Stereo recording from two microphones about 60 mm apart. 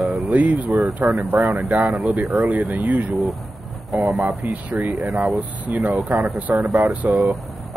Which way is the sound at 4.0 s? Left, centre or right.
Right.